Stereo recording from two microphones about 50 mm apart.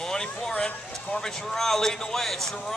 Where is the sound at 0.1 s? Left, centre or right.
Centre.